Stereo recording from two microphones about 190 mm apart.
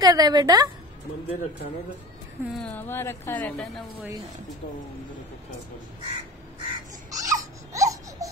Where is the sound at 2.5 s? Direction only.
10° left (ahead or behind).